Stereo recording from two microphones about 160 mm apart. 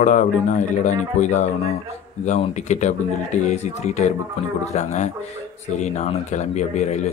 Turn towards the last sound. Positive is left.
turn(degrees=45)  # may be behind; listen again after turning